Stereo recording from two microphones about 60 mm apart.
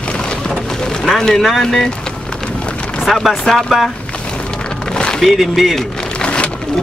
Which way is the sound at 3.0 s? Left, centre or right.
Centre.